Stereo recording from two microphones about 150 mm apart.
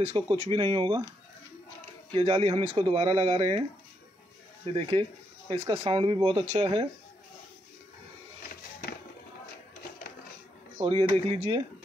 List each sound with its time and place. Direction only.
0.0 s speech: 35° right (ahead or behind)
2.1 s speech: 35° right (ahead or behind)
4.6 s speech: 35° right (ahead or behind)
10.8 s speech: 35° right (ahead or behind)